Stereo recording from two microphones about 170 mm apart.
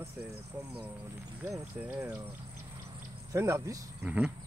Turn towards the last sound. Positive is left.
turn(degrees=-10)  # may be behind; listen again after turning